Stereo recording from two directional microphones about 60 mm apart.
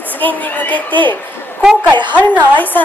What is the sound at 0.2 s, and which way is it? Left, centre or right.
Speech, left.